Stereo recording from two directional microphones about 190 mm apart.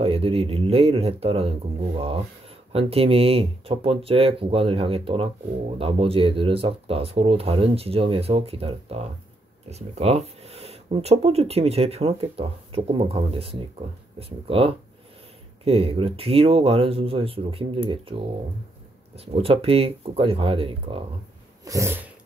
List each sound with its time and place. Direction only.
0.0 s speech: 30° right (ahead or behind)
21.6 s sneeze: 15° right (ahead or behind)